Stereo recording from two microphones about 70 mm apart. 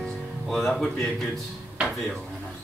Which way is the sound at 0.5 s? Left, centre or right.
Centre.